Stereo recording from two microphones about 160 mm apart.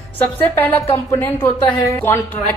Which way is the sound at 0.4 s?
10° left (ahead or behind).